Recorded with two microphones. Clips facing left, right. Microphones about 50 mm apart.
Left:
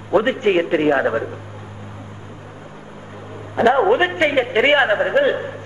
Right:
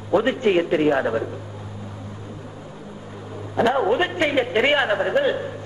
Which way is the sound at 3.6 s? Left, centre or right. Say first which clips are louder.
Left 5 dB; left.